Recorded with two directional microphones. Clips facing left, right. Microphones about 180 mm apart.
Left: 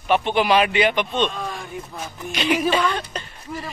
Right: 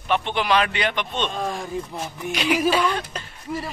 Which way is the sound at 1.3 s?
30° right (ahead or behind).